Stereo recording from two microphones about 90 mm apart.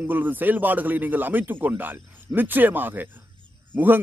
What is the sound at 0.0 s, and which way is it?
A man's voice, 20° right (ahead or behind).